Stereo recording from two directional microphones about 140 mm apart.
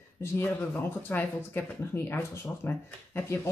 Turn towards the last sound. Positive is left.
turn(degrees=20)  # may be behind; listen again after turning